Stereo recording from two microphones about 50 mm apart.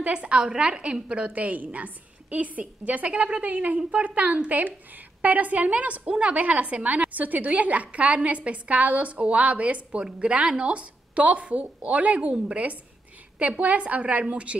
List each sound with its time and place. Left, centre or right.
0.0 s a woman's voice: right
1.2 s a woman's voice: right